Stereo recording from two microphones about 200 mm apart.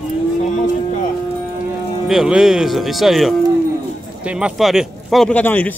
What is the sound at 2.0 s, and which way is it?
Speech, 5° right (ahead or behind).